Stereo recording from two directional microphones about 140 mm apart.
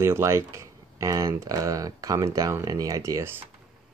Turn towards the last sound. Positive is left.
turn(degrees=-20)  # may be behind; listen again after turning